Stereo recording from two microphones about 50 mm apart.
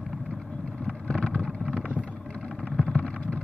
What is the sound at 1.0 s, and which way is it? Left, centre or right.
Vehicle, centre.